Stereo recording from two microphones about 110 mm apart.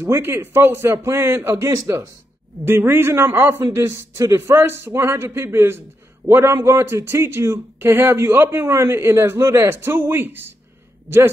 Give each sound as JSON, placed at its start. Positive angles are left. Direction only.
{"t": 0.0, "sound": "a man's voice", "side_deg": -20}